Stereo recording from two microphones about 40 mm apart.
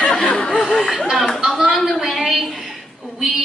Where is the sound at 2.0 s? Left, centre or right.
Centre.